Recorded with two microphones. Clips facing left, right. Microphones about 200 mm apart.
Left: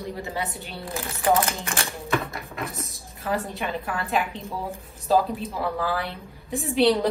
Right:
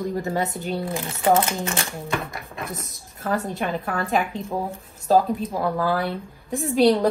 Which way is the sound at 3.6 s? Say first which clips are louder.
Right 3 dB; 45° right (ahead or behind).